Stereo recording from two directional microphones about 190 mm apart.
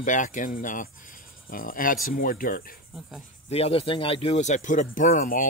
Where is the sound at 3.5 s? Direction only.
30° left (ahead or behind).